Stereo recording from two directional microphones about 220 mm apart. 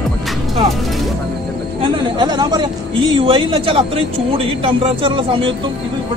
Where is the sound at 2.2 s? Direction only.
20° right (ahead or behind).